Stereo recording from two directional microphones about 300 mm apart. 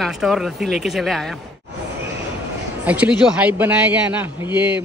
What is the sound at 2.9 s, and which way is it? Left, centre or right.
Speech, centre.